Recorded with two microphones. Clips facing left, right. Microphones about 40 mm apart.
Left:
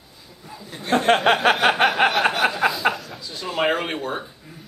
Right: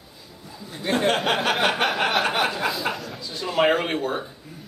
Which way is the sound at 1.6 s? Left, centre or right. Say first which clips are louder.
Left 4 dB; centre.